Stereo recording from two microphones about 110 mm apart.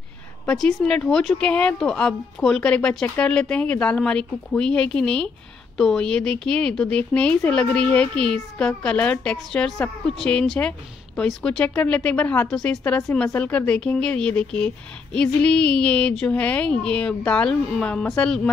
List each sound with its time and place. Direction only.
0.5 s speech: 5° left (ahead or behind)